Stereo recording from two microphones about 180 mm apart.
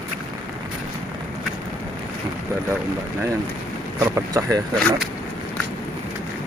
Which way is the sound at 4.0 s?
20° right (ahead or behind).